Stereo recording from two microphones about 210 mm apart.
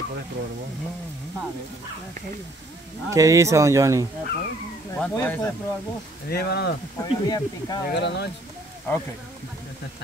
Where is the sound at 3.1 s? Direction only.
15° right (ahead or behind).